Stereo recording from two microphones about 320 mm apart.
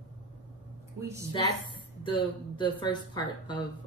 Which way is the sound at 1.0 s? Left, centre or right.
Centre.